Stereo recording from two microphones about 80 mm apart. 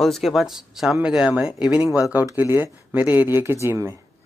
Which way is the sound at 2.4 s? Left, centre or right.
Right.